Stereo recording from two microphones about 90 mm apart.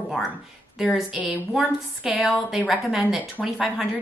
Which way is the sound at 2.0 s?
5° right (ahead or behind).